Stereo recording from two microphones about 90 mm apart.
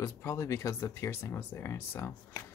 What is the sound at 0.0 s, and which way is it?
Speech, 30° left (ahead or behind).